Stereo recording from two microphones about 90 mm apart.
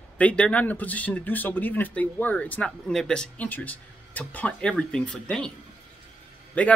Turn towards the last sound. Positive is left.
turn(degrees=15)  # may be behind; listen again after turning